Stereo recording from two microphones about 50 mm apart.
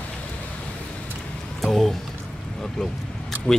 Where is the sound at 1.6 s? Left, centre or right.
Centre.